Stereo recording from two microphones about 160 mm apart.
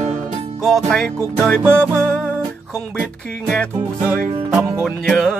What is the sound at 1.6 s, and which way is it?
Music, 15° right (ahead or behind).